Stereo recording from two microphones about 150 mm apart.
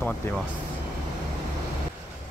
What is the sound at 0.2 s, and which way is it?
Speech, 15° left (ahead or behind).